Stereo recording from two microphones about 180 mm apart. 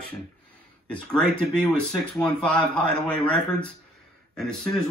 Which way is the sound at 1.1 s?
5° left (ahead or behind).